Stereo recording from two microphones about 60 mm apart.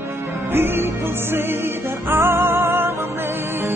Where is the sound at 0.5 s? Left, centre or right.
Right.